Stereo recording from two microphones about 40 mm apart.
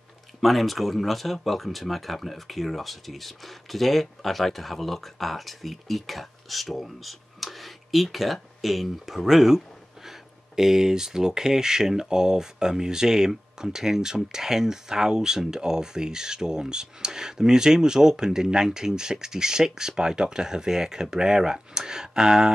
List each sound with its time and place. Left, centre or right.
0.4 s speech: centre